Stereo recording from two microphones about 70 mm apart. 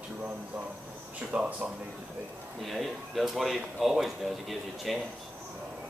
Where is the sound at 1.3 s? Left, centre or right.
Right.